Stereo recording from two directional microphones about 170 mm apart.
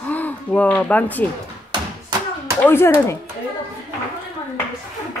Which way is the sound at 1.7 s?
25° right (ahead or behind).